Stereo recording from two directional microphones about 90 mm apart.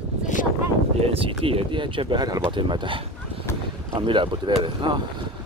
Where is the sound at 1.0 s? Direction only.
90° right; by 5.0 s 60° right (ahead or behind).